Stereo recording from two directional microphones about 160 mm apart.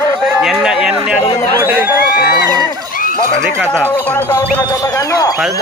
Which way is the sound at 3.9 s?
15° left (ahead or behind).